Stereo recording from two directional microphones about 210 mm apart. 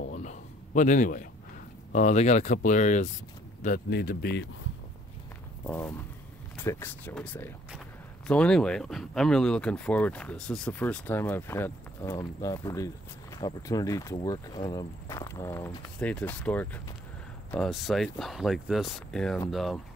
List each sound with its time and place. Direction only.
0.1 s a sound: 35° left (ahead or behind)
1.9 s a man's voice: 35° left (ahead or behind)
5.7 s speech: 10° left (ahead or behind)